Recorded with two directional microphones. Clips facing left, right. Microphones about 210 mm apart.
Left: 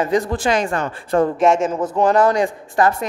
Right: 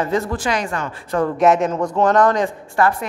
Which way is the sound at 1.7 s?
10° left (ahead or behind).